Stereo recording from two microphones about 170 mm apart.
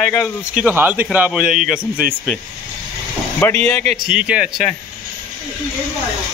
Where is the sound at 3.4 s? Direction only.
10° left (ahead or behind).